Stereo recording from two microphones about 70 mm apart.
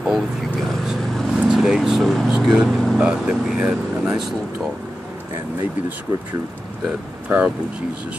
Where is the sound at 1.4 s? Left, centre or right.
Centre.